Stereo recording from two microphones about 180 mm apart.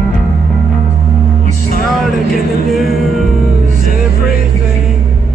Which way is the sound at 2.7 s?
Centre (ahead or behind).